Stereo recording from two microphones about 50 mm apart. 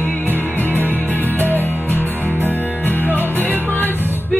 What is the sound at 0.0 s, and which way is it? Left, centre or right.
Music, left.